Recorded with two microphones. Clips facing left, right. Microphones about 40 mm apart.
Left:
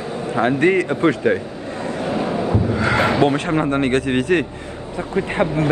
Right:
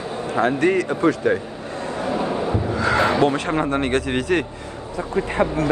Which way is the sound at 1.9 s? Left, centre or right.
Left.